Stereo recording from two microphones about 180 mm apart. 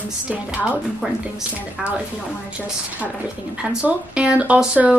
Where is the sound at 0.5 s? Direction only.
10° right (ahead or behind).